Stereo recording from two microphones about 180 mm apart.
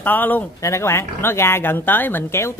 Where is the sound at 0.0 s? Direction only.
10° left (ahead or behind).